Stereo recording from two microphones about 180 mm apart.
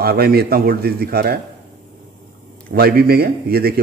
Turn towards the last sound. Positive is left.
turn(degrees=-60)  # may be behind; listen again after turning